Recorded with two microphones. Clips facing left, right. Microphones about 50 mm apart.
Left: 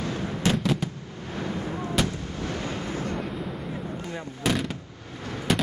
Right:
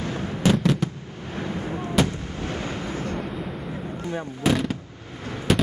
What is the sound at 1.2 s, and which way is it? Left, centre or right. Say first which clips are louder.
Artillery fire: right 1 dB; right.